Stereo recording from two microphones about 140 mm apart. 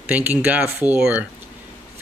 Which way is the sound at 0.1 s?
10° right (ahead or behind).